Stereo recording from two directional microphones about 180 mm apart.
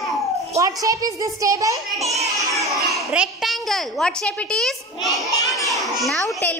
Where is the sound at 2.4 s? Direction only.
15° right (ahead or behind).